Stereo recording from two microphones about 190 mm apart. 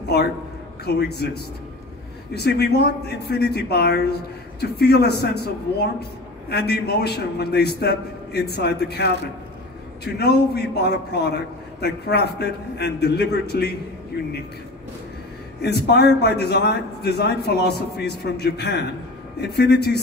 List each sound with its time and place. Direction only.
0.8 s a man's voice: 60° left (ahead or behind)
10.1 s a man's voice: 60° left (ahead or behind)
15.6 s a man's voice: 60° left (ahead or behind)